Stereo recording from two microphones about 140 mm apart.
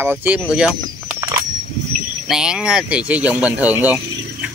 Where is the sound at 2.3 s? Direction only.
5° right (ahead or behind).